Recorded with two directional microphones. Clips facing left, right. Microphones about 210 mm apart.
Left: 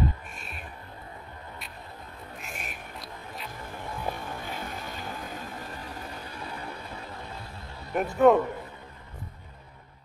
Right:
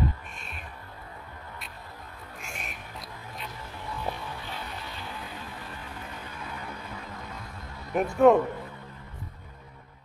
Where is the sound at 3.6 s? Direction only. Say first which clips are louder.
Left 1 dB; 50° left (ahead or behind); by 7.8 s 30° left (ahead or behind).